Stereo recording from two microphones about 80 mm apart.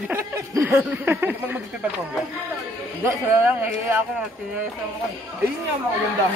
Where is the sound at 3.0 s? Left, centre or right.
Right.